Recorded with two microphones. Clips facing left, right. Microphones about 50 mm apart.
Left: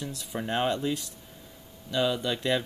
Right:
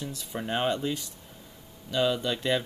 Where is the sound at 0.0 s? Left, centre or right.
Centre.